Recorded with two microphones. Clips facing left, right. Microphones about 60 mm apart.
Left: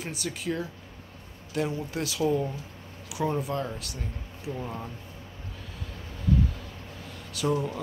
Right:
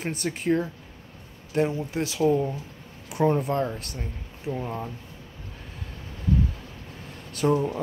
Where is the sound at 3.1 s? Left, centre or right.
Right.